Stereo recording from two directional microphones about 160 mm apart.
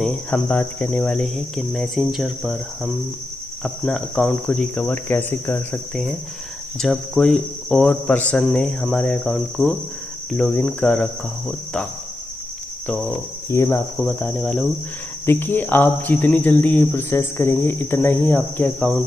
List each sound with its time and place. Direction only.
0.0 s speech: 5° left (ahead or behind)
6.8 s speech: 5° left (ahead or behind)
13.5 s speech: 15° left (ahead or behind)
14.2 s speech: 5° left (ahead or behind)